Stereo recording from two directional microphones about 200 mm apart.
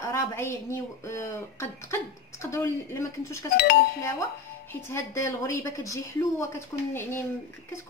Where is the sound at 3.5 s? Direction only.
55° left (ahead or behind).